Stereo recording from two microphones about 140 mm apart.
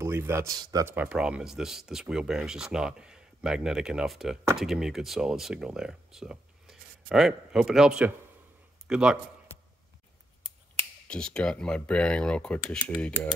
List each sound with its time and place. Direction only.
0.0 s speech: 15° right (ahead or behind)
0.9 s a man's voice: 10° right (ahead or behind)
11.1 s speech: 5° left (ahead or behind)